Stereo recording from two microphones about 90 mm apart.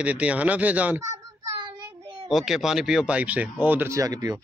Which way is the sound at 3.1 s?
15° right (ahead or behind).